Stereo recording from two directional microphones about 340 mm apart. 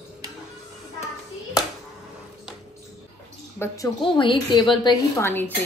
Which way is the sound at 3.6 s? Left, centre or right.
Centre.